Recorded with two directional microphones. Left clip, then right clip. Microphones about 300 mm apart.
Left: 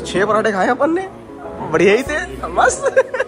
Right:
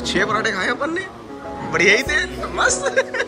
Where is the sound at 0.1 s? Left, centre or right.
Centre.